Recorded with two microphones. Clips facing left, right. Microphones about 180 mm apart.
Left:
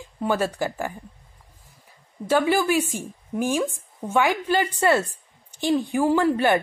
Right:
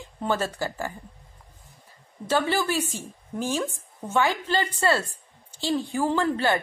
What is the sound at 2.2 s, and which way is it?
A woman's voice, 10° left (ahead or behind).